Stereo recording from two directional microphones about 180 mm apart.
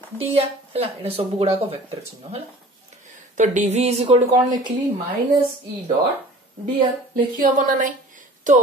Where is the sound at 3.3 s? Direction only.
40° right (ahead or behind).